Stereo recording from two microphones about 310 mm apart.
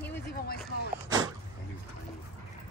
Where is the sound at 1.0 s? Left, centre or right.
Centre.